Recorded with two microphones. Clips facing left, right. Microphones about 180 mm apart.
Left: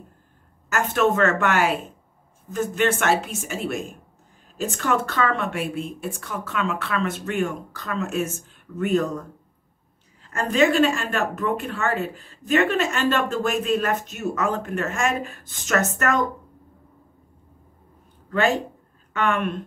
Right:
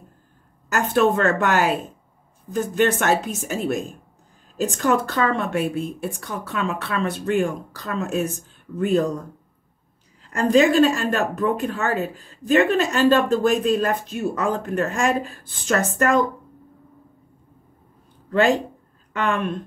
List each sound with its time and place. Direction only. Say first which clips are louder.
0.7 s speech: right 2 dB; 35° right (ahead or behind)
10.5 s speech: right 3 dB; 35° right (ahead or behind)
19.2 s speech: even; 35° right (ahead or behind)